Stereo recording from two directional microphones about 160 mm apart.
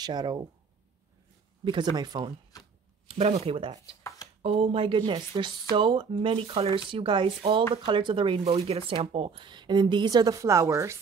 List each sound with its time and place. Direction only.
0.0 s speech: 25° right (ahead or behind)
1.6 s speech: 30° right (ahead or behind)
2.5 s a sound: 25° left (ahead or behind)
3.1 s speech: 40° right (ahead or behind); by 11.0 s 20° right (ahead or behind)